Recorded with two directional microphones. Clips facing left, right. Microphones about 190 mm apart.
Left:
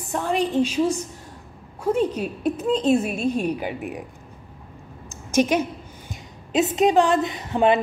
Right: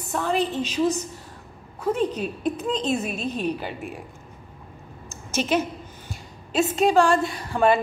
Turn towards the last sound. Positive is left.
turn(degrees=20)  # may be behind; listen again after turning